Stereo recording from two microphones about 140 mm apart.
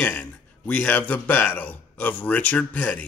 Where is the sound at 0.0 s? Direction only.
10° left (ahead or behind).